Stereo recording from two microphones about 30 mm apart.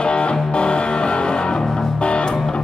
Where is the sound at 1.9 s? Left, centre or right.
Left.